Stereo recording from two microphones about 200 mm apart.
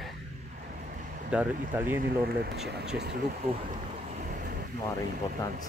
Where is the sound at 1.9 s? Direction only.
50° right (ahead or behind).